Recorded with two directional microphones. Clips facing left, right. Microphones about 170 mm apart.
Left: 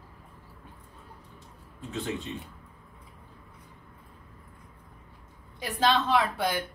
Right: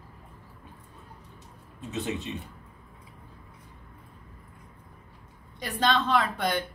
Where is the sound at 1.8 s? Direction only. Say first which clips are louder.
Right 1 dB; 20° right (ahead or behind).